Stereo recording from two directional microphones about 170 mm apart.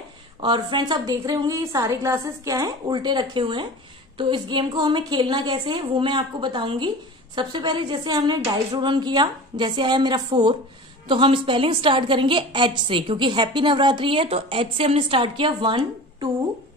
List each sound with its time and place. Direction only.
0.4 s a woman's voice: 25° right (ahead or behind)